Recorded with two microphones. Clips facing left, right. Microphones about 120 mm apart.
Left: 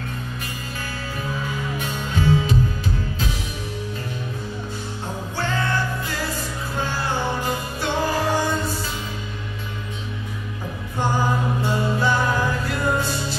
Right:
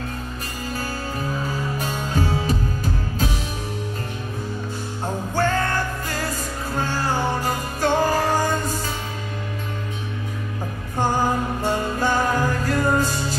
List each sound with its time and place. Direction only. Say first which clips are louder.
1.4 s music: right 1 dB; 40° right (ahead or behind)
5.3 s music: right 3 dB; 45° right (ahead or behind)
11.6 s music: even; 45° right (ahead or behind)